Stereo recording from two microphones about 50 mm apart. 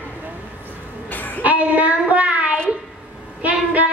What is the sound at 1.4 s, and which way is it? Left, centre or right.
Child singing, right.